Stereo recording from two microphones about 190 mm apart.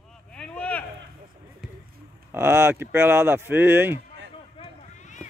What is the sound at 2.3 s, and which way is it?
Speech, 15° right (ahead or behind).